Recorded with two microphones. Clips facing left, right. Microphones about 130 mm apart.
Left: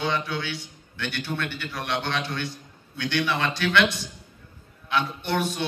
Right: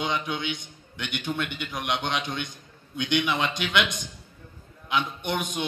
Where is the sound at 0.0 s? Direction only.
15° right (ahead or behind).